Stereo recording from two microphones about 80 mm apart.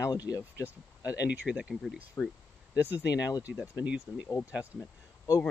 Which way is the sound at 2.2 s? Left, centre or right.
Left.